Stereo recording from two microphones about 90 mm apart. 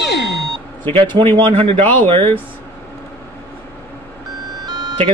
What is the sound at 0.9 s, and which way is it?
Speech, 85° right.